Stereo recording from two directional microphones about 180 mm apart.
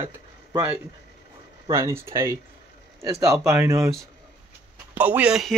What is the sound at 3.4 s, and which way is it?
Speech, 15° right (ahead or behind).